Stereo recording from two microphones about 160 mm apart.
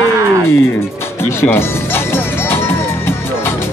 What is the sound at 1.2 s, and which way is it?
Music, 15° left (ahead or behind).